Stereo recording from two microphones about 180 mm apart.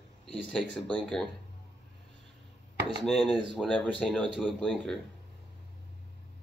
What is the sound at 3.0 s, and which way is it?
A man's voice, 5° left (ahead or behind).